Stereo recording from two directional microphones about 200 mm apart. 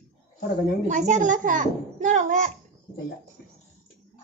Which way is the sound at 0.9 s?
40° right (ahead or behind).